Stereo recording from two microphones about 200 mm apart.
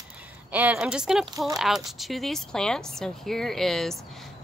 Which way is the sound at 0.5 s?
5° right (ahead or behind).